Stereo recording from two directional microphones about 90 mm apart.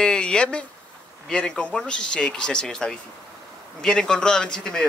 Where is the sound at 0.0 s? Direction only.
10° left (ahead or behind).